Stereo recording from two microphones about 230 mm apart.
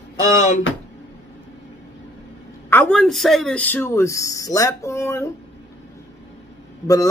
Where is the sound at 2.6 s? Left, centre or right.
Centre.